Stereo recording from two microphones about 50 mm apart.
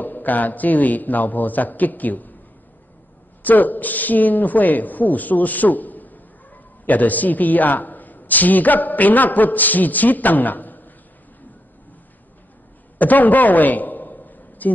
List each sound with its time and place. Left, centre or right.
0.0 s a man's voice: left
3.4 s a woman's voice: left
13.0 s a sound: left